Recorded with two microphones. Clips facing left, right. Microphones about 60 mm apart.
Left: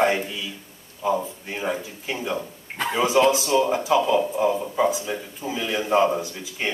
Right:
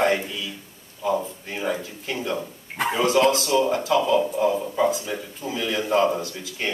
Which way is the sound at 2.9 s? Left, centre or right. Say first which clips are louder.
Left 1 dB; centre.